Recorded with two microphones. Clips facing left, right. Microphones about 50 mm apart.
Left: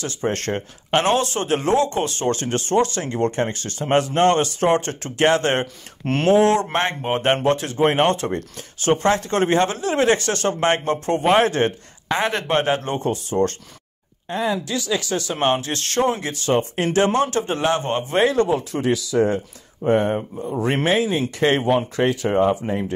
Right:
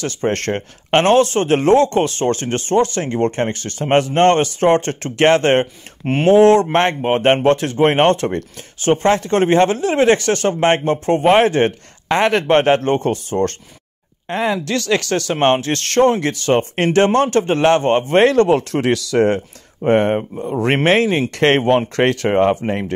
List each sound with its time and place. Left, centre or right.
0.0 s speech: right
14.3 s speech: right
15.4 s speech: right
18.2 s speech: right
19.8 s speech: right
22.3 s speech: right